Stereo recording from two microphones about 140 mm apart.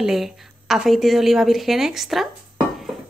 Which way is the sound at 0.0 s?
Centre (ahead or behind).